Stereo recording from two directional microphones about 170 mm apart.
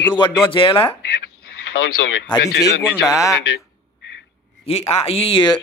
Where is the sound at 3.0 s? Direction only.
20° left (ahead or behind).